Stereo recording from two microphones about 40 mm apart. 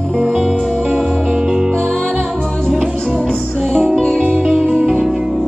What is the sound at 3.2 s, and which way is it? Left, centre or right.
Music, centre.